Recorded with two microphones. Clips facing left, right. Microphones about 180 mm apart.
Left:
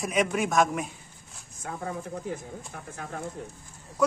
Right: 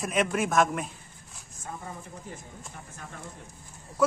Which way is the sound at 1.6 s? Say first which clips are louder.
Left 6 dB; 70° left (ahead or behind).